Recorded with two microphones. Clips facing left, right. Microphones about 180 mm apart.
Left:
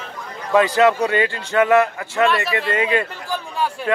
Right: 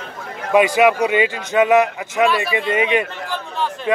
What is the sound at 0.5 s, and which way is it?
Speech, 15° right (ahead or behind).